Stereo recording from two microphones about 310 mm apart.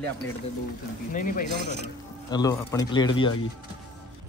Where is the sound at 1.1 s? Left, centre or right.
Left.